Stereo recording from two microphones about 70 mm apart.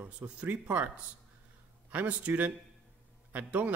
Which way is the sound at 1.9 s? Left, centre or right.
Centre.